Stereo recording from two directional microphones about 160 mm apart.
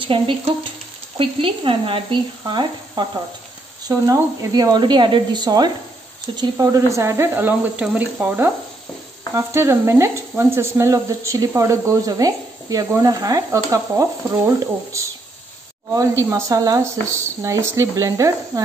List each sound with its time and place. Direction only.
0.0 s speech: 35° right (ahead or behind)